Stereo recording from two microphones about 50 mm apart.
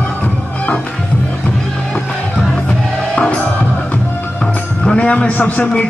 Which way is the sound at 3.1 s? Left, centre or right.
Left.